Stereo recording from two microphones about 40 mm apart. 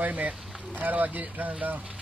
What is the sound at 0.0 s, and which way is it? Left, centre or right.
Speech, right.